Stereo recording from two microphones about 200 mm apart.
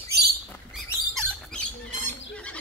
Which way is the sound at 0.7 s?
Centre (ahead or behind).